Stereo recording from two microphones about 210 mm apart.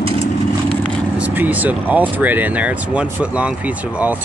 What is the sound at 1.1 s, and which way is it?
Speech, 5° right (ahead or behind).